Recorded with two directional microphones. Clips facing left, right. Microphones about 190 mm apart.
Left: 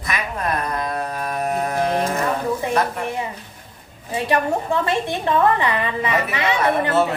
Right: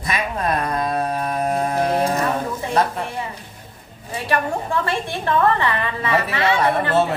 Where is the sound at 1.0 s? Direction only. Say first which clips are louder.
Right 3 dB; 30° right (ahead or behind).